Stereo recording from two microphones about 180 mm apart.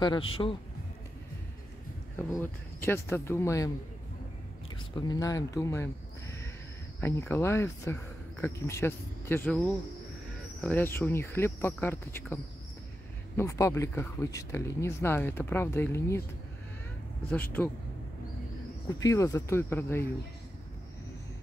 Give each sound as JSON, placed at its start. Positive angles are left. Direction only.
{"t": 0.0, "sound": "speech", "side_deg": 30}
{"t": 2.3, "sound": "speech", "side_deg": 15}
{"t": 4.9, "sound": "speech", "side_deg": 20}
{"t": 7.0, "sound": "speech", "side_deg": 15}
{"t": 13.4, "sound": "speech", "side_deg": 15}
{"t": 17.3, "sound": "speech", "side_deg": 10}
{"t": 18.9, "sound": "speech", "side_deg": 15}